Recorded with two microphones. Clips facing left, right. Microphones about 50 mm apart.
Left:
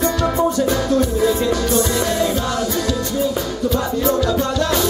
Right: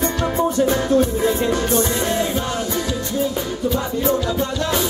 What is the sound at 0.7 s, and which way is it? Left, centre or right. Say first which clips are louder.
Music: even; right.